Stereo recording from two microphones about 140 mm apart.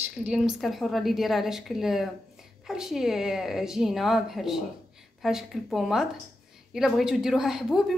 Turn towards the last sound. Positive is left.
turn(degrees=-5)  # may be behind; listen again after turning